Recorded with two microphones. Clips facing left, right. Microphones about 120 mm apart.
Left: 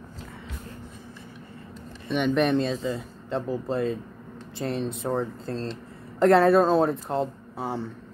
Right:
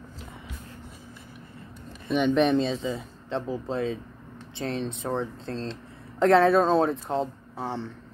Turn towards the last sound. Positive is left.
turn(degrees=5)  # may be behind; listen again after turning